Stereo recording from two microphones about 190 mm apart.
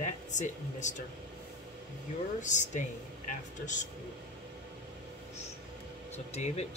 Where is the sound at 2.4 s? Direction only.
40° left (ahead or behind).